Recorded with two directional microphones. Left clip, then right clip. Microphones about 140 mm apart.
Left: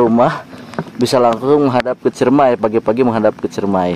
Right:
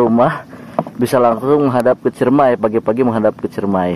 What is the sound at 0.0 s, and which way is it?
Speech, 20° left (ahead or behind).